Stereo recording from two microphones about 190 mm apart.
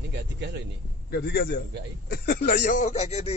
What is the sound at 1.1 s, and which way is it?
Speech, 60° left (ahead or behind).